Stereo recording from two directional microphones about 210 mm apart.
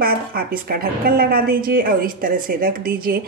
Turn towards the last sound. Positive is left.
turn(degrees=-45)  # may be behind; listen again after turning